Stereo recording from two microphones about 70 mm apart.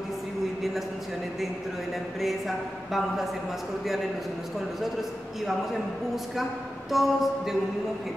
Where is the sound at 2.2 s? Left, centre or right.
Centre.